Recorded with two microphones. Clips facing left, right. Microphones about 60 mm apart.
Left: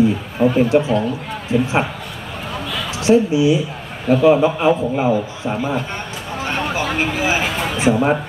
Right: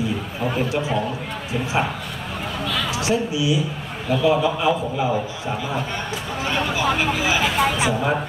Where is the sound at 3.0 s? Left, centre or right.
Left.